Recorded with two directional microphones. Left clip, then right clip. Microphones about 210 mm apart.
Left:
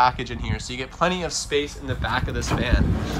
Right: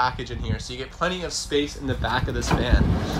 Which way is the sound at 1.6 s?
25° right (ahead or behind).